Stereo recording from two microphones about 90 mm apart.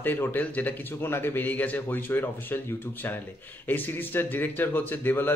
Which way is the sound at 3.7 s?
20° left (ahead or behind).